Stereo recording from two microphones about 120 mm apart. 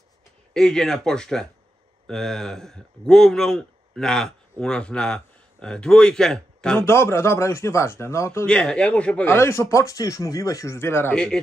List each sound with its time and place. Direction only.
0.5 s speech: 5° left (ahead or behind)
6.9 s speech: 20° left (ahead or behind)
8.5 s a man's voice: 10° left (ahead or behind)
9.3 s speech: 25° left (ahead or behind)